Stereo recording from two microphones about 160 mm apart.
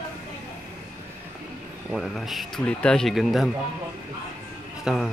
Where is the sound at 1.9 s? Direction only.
Centre (ahead or behind).